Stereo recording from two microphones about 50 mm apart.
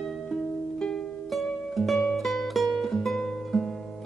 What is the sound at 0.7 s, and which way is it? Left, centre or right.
Music, centre.